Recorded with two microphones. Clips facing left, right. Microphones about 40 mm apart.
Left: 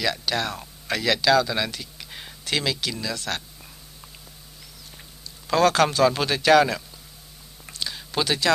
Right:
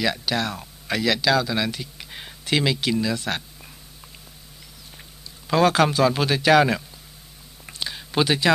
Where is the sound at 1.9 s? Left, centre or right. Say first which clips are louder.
Right 1 dB; centre.